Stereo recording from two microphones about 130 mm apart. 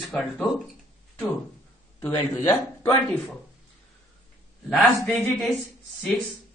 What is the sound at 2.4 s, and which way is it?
Speech, 15° left (ahead or behind).